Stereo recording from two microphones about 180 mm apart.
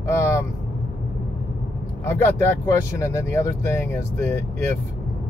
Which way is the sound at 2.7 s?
15° left (ahead or behind).